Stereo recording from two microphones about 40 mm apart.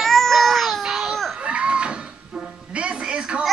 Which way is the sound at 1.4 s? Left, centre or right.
Right.